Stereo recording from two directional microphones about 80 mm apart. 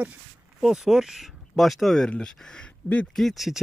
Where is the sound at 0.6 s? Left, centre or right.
Centre.